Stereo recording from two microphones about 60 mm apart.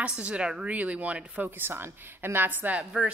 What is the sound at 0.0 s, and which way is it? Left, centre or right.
A woman's voice, centre.